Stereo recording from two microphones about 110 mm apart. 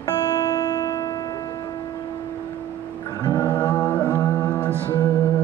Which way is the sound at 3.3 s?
20° left (ahead or behind).